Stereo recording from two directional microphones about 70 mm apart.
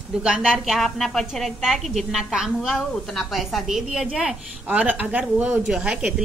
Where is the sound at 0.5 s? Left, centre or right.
Centre.